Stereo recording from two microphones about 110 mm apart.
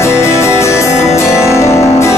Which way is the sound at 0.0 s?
25° left (ahead or behind).